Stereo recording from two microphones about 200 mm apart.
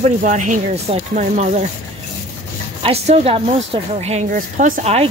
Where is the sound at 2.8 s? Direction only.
30° right (ahead or behind).